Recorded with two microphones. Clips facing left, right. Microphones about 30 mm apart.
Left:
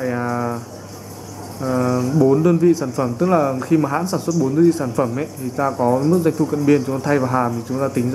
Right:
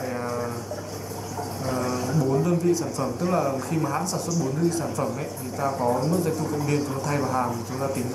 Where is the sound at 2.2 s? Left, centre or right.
Left.